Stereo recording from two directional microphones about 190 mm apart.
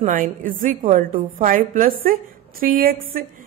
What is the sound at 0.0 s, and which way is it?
A woman's voice, 45° right (ahead or behind).